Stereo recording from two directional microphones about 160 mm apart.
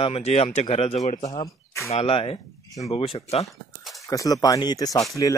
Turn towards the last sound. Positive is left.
turn(degrees=25)  # may be behind; listen again after turning